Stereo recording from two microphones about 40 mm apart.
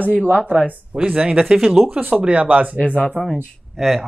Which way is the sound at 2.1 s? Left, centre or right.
Right.